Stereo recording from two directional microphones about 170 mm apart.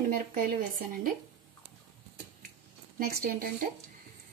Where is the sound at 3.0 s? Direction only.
65° right (ahead or behind).